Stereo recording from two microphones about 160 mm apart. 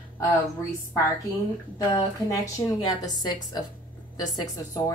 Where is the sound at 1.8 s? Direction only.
20° left (ahead or behind).